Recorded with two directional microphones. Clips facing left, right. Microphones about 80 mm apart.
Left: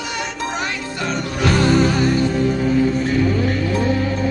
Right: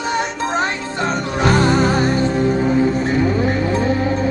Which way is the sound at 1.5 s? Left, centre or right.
Right.